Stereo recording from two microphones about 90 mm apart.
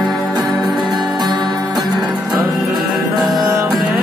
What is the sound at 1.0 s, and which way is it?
Music, 55° right (ahead or behind).